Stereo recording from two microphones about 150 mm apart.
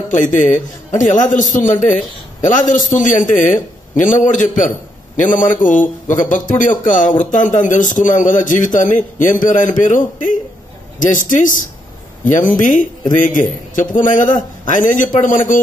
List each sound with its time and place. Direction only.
0.2 s a man's voice: 60° left (ahead or behind)